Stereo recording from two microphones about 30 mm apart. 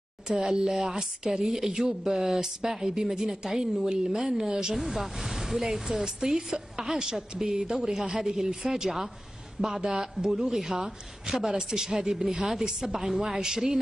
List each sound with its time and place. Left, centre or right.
0.3 s a woman's voice: right
4.0 s speech: centre
4.7 s a woman's voice: centre
9.8 s speech: right
10.5 s a woman's voice: centre